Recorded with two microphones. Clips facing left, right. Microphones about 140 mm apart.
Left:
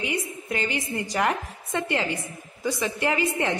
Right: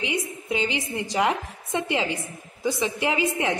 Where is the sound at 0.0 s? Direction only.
15° right (ahead or behind).